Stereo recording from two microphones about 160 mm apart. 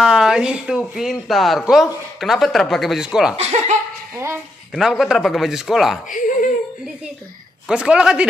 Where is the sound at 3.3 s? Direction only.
40° right (ahead or behind).